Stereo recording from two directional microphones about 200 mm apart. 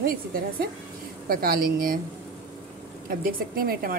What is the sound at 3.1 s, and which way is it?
Speech, 45° right (ahead or behind).